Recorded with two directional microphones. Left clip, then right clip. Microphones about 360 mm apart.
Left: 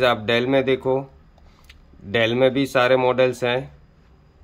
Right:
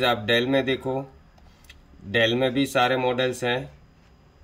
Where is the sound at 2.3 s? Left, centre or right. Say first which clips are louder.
Left 4 dB; centre.